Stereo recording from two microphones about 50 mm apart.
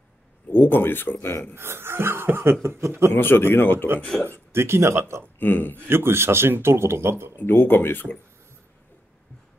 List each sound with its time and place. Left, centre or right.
0.5 s speech: left
1.5 s speech: right
2.6 s speech: right
3.2 s speech: left
4.1 s speech: centre
4.5 s speech: right
5.4 s speech: left
5.9 s speech: right
7.3 s speech: left